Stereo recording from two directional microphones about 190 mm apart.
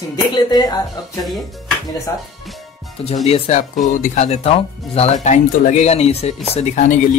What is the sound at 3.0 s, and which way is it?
Speech, 30° left (ahead or behind).